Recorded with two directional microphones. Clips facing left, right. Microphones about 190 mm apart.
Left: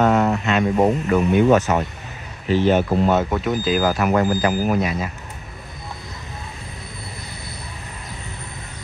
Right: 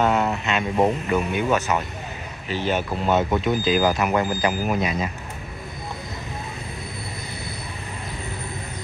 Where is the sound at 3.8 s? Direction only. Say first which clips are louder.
Left 1 dB; 15° right (ahead or behind).